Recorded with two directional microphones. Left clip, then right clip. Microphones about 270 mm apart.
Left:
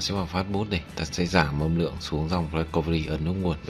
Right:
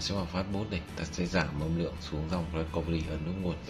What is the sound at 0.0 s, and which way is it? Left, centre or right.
Speech, left.